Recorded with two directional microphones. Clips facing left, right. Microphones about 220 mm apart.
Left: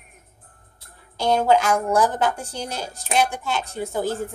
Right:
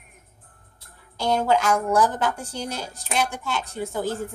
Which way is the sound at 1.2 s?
25° left (ahead or behind).